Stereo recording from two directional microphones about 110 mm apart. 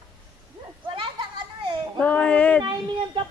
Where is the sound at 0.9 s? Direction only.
50° right (ahead or behind).